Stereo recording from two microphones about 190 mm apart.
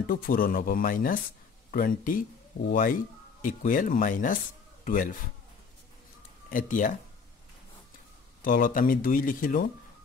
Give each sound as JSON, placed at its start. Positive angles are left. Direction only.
{"t": 0.1, "sound": "speech", "side_deg": 50}
{"t": 6.5, "sound": "speech", "side_deg": 45}
{"t": 8.4, "sound": "speech", "side_deg": 45}